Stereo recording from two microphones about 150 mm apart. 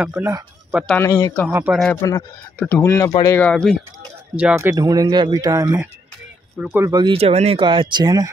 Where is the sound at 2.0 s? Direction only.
20° left (ahead or behind).